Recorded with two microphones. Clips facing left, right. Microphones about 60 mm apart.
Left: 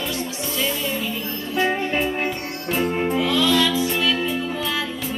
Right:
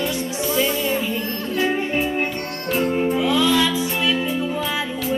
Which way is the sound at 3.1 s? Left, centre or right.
Centre.